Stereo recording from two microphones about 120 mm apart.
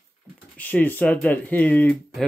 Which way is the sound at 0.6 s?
15° left (ahead or behind).